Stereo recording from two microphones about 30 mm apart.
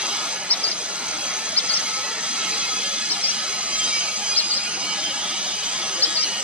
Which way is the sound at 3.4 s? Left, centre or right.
Right.